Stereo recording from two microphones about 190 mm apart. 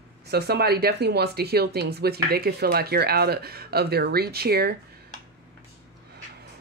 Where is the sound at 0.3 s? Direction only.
60° right (ahead or behind).